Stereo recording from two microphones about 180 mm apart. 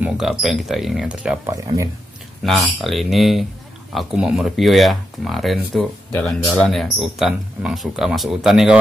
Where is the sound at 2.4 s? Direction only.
Centre (ahead or behind).